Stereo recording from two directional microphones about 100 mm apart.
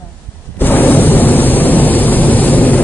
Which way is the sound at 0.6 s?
20° left (ahead or behind).